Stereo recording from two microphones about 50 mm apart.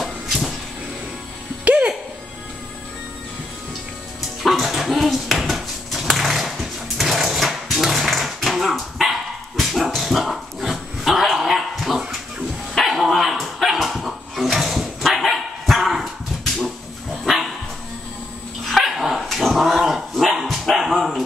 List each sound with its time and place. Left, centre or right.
0.0 s cupboard open or close: centre
1.6 s music: right
4.4 s a sound: centre
9.6 s dog: centre
17.2 s dog: centre
18.7 s dog: centre